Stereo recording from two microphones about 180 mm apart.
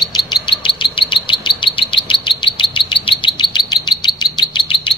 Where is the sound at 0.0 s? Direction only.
25° left (ahead or behind).